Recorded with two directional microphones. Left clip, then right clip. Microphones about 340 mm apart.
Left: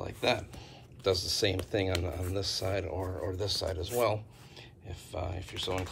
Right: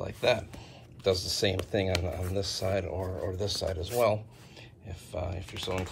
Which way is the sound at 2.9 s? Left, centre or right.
Left.